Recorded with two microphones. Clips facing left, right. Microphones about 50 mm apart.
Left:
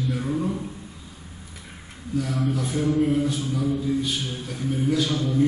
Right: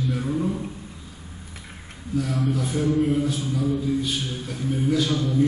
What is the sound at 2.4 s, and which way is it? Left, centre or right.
A man's voice, centre.